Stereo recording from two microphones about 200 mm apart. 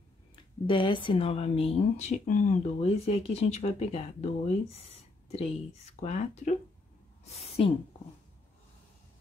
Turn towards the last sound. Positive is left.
turn(degrees=30)  # may be behind; listen again after turning